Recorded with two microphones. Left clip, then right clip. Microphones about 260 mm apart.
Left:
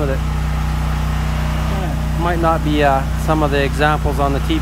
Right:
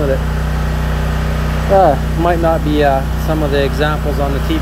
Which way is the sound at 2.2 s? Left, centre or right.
Centre.